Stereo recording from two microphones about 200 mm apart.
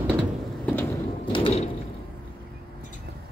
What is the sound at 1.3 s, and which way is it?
Sliding door, 25° left (ahead or behind).